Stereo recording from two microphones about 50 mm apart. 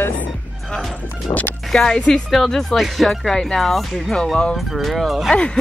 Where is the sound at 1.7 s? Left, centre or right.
Centre.